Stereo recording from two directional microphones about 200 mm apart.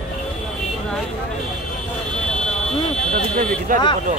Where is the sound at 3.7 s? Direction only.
45° right (ahead or behind).